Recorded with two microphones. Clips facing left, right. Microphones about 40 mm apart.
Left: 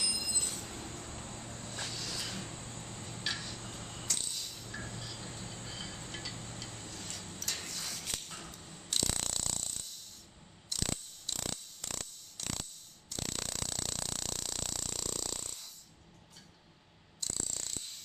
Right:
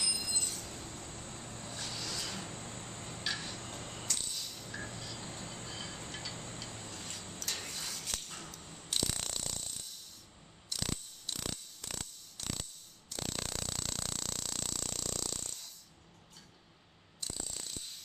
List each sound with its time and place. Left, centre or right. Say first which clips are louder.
0.0 s train: even; centre
0.4 s train: left 1 dB; left
0.7 s vehicle: left 1 dB; centre
1.9 s a sound: right 3 dB; centre
6.3 s tick-tock: right 1 dB; centre
8.5 s a sound: even; centre
17.2 s ratchet: left 1 dB; centre